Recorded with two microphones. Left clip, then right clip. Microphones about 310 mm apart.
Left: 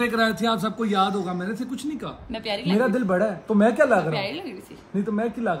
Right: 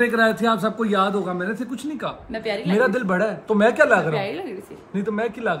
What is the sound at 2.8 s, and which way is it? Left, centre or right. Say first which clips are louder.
Speech: right 2 dB; right.